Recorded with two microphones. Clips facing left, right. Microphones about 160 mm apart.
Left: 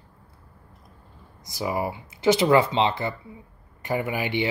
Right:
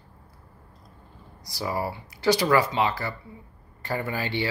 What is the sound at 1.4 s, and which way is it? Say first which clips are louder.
Speech: left 2 dB; 20° left (ahead or behind).